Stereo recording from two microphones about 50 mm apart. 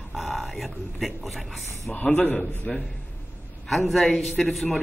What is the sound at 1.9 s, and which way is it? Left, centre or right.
Speech, left.